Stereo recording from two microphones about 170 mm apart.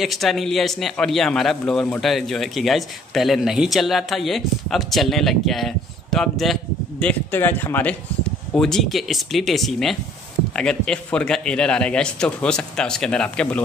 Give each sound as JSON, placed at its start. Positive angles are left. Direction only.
{"t": 0.0, "sound": "a man's voice", "side_deg": 0}